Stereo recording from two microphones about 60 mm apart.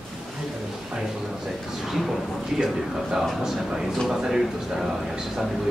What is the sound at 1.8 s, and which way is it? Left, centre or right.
A man's voice, centre.